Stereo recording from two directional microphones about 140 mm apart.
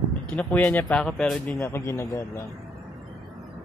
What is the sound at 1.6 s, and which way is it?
Speech, 20° left (ahead or behind).